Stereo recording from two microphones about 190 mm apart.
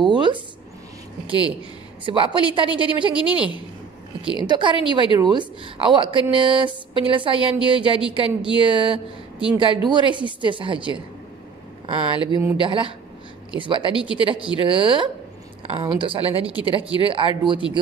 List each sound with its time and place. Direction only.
0.0 s speech: 25° right (ahead or behind)
2.0 s a woman's voice: 25° right (ahead or behind)
3.2 s a woman's voice: 5° right (ahead or behind)
4.3 s a woman's voice: 25° right (ahead or behind)
12.3 s speech: 15° right (ahead or behind)
12.5 s a woman's voice: 25° right (ahead or behind)